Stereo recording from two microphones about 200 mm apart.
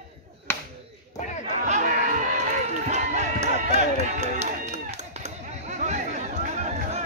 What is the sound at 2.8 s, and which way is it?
Run, 35° right (ahead or behind).